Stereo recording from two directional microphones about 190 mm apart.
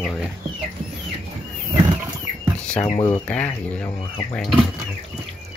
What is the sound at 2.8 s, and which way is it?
Speech, 25° left (ahead or behind).